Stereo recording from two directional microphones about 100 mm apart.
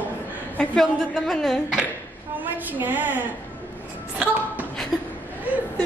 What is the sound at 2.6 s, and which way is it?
Speech, 20° right (ahead or behind).